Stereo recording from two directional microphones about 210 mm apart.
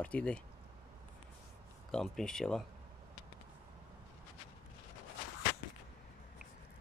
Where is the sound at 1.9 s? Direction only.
Centre (ahead or behind).